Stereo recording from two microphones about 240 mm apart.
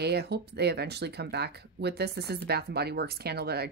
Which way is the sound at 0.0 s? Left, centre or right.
Right.